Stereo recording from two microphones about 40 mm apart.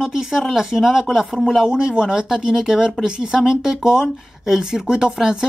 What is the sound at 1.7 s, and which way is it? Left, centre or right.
Speech, right.